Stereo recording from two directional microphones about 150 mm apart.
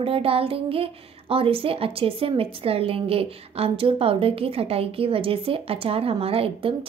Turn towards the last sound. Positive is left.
turn(degrees=-40)  # may be behind; listen again after turning